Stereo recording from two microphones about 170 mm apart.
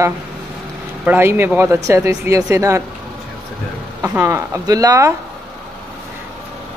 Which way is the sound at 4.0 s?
15° right (ahead or behind).